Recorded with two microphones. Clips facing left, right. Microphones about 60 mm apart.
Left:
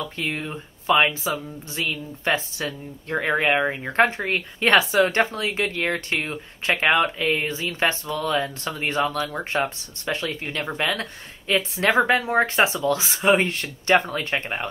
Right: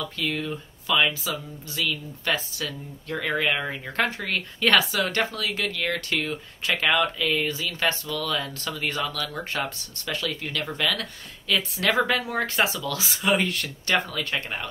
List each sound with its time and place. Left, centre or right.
0.0 s speech: left